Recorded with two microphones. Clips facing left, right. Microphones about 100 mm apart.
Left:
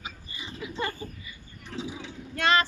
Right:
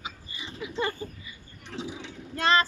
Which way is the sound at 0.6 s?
20° right (ahead or behind).